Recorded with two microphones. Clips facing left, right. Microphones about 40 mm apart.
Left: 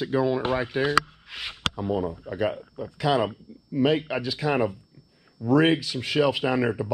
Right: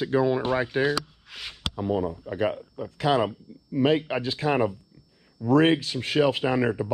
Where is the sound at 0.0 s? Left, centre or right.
Centre.